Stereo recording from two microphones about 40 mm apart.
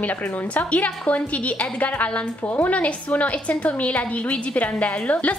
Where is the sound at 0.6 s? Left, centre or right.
Left.